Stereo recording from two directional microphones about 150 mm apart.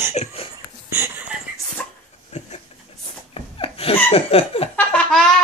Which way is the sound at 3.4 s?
40° left (ahead or behind).